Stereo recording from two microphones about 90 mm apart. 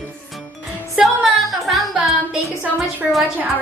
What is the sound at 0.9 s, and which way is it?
Music, centre (ahead or behind).